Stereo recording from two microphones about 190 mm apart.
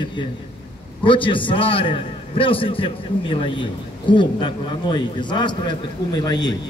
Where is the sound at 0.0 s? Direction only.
25° left (ahead or behind).